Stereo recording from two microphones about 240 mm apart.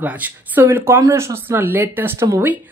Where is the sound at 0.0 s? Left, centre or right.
Centre.